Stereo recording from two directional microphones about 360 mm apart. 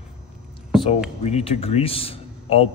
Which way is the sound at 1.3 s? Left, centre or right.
Centre.